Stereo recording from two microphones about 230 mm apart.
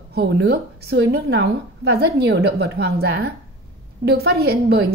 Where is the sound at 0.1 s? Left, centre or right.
Right.